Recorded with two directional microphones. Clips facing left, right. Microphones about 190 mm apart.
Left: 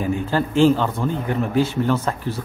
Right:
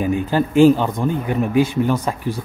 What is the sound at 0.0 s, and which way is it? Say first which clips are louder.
A man's voice: right 3 dB; 15° right (ahead or behind).